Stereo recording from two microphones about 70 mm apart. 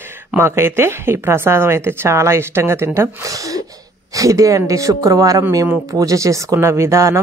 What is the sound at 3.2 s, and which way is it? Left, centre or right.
Speech, right.